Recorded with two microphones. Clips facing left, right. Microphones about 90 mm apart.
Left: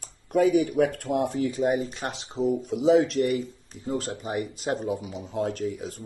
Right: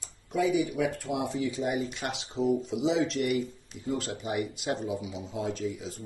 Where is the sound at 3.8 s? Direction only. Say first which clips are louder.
Left 2 dB; 40° left (ahead or behind); by 6.0 s 55° left (ahead or behind).